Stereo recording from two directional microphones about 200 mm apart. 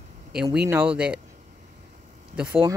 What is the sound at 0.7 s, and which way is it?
Speech, 10° right (ahead or behind).